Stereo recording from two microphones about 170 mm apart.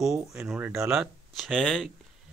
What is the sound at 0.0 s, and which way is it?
Speech, 5° right (ahead or behind).